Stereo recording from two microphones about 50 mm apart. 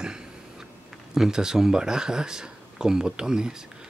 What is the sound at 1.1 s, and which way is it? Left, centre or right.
Speech, centre.